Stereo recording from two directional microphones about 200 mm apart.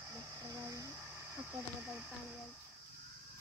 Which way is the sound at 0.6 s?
15° right (ahead or behind).